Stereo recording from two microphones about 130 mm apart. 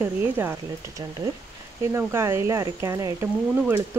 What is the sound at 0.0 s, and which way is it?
Speech, 15° right (ahead or behind).